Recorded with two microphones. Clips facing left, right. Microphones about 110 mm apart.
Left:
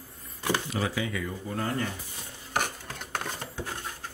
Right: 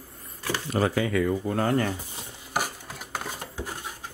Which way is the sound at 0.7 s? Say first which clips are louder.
Right 6 dB; 50° right (ahead or behind).